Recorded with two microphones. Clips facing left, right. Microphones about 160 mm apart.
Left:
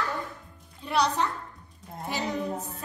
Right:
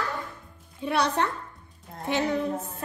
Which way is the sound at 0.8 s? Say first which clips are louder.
Right 1 dB; 60° right (ahead or behind).